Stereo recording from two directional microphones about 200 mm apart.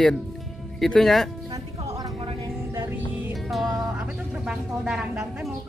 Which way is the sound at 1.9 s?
15° right (ahead or behind).